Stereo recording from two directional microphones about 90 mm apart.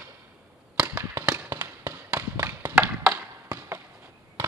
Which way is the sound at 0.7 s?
15° right (ahead or behind).